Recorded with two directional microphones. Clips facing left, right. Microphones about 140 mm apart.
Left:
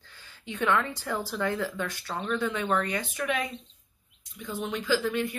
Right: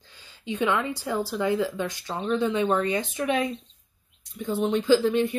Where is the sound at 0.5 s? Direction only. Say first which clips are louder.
Right 2 dB; 15° right (ahead or behind).